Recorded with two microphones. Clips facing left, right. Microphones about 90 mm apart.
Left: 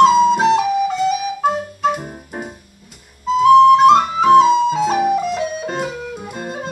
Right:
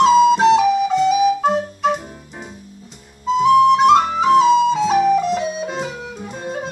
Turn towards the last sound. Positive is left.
turn(degrees=5)  # may be behind; listen again after turning